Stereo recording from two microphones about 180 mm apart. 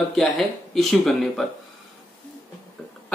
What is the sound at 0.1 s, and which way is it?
Speech, centre (ahead or behind).